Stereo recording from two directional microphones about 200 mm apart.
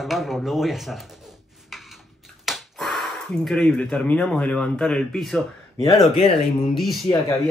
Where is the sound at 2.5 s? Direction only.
Centre (ahead or behind).